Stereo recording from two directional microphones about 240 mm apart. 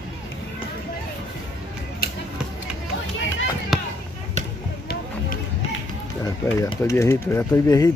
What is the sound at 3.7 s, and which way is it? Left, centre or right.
Basketball bounce, centre.